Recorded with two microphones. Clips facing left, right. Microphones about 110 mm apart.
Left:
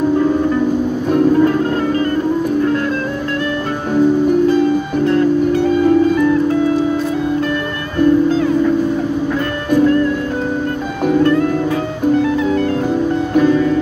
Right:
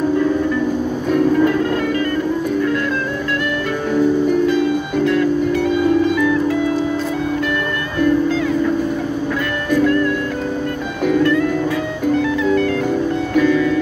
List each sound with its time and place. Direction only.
1.1 s music: 35° left (ahead or behind)
4.5 s music: 40° left (ahead or behind)
9.7 s music: 35° left (ahead or behind)
11.1 s music: 35° left (ahead or behind)
13.3 s music: 35° left (ahead or behind)